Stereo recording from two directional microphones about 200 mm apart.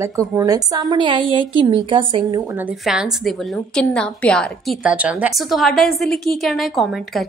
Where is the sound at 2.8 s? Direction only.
Centre (ahead or behind).